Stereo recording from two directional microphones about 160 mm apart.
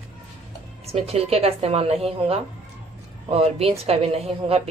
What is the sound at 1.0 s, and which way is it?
Speech, 40° right (ahead or behind).